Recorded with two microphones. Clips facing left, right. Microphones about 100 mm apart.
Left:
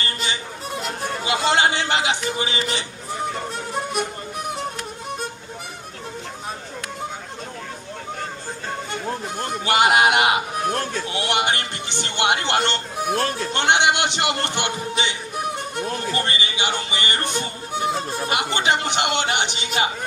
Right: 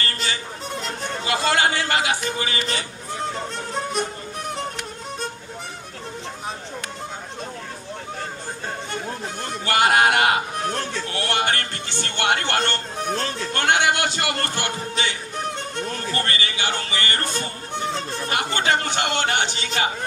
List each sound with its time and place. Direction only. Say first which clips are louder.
0.0 s music: even; 20° left (ahead or behind)
1.2 s speech: left 1 dB; 20° left (ahead or behind)
9.4 s speech: left 1 dB; 20° left (ahead or behind)
10.7 s speech: left 2 dB; 45° left (ahead or behind)
11.1 s a man's voice: even; 15° left (ahead or behind)